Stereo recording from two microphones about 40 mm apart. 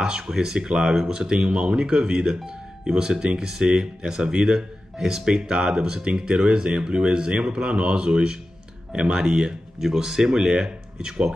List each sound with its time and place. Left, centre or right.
0.0 s speech: centre